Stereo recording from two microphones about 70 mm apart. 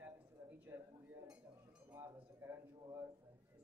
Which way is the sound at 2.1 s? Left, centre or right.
Right.